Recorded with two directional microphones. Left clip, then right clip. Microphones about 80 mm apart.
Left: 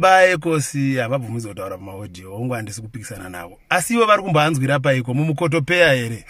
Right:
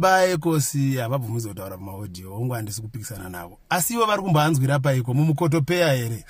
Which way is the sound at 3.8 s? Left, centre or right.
Right.